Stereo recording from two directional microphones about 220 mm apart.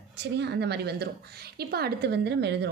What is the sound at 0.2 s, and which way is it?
A woman's voice, 50° right (ahead or behind).